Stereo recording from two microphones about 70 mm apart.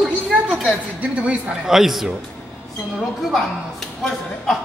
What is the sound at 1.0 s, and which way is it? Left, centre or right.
Speech, right.